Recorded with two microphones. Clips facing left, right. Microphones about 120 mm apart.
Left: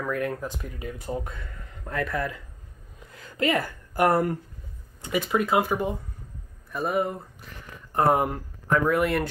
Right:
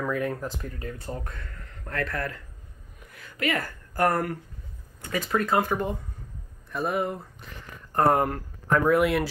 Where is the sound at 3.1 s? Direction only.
25° left (ahead or behind).